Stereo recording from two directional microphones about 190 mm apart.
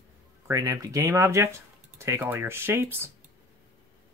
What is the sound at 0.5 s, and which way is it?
Speech, 15° right (ahead or behind).